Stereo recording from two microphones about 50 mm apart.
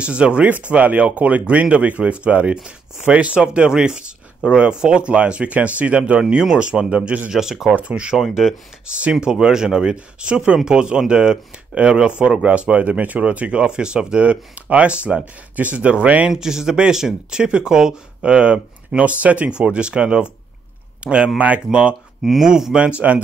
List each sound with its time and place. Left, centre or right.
0.0 s speech: right
6.1 s speech: centre
7.9 s speech: centre
8.2 s speech: centre; by 16.3 s right
16.3 s speech: centre
22.2 s speech: centre
22.8 s speech: right